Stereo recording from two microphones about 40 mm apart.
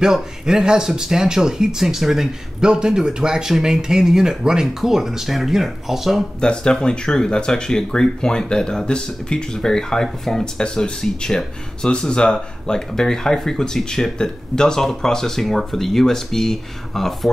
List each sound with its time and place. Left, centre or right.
0.0 s speech: centre
6.4 s speech: left
10.6 s speech: centre